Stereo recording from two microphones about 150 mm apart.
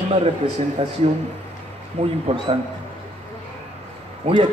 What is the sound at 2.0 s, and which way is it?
Speech, 45° right (ahead or behind).